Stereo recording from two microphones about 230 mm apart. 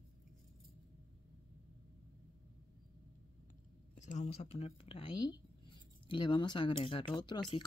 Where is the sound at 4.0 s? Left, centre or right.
Left.